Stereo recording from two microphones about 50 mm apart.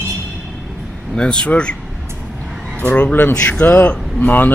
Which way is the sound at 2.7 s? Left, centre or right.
Left.